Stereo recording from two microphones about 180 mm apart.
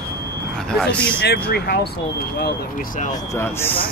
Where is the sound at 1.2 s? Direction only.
60° left (ahead or behind).